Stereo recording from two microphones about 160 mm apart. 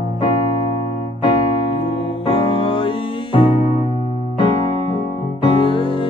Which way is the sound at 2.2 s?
35° left (ahead or behind).